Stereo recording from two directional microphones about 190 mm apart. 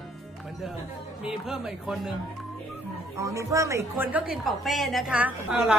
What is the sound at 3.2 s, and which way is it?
A woman's voice, 15° right (ahead or behind).